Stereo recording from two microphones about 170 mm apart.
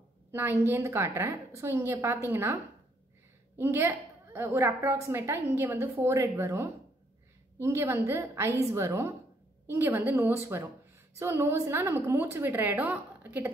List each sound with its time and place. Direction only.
0.3 s a woman's voice: 15° right (ahead or behind)
3.5 s a woman's voice: 15° right (ahead or behind)